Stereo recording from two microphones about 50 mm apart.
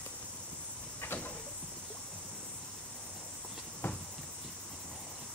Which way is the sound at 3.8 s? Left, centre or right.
Left.